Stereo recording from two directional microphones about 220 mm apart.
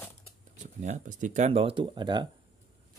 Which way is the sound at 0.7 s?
35° right (ahead or behind).